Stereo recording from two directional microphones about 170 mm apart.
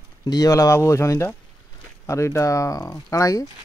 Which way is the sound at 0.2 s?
20° left (ahead or behind).